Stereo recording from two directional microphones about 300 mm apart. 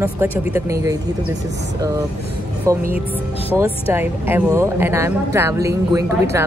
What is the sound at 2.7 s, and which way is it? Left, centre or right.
Speech, centre.